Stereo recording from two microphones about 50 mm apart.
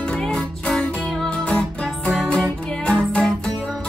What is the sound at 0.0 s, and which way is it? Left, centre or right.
Music, centre.